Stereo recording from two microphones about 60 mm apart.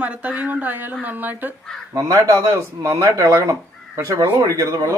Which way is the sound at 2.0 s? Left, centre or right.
Right.